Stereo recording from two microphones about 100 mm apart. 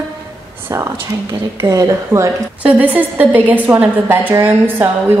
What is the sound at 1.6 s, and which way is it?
Speech, 30° right (ahead or behind).